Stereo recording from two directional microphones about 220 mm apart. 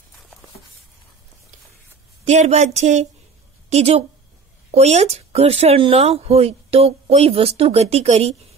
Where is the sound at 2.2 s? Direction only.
30° right (ahead or behind).